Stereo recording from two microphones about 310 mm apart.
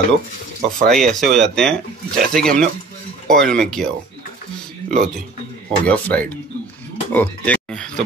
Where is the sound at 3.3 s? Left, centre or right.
Centre.